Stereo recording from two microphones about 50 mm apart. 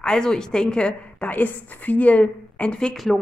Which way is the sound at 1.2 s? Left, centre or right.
Left.